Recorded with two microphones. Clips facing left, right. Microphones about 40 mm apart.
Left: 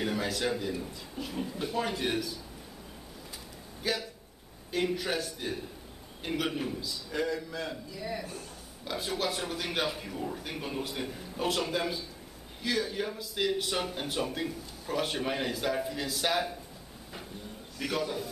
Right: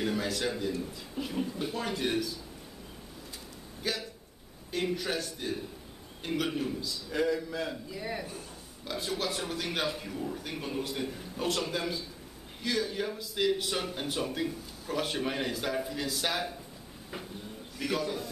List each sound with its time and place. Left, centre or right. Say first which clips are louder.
0.0 s a man's voice: even; centre
1.1 s a man's voice: right 3 dB; centre
3.8 s a man's voice: left 2 dB; centre
7.9 s a man's voice: even; centre
8.8 s a man's voice: left 1 dB; centre
17.7 s a man's voice: even; centre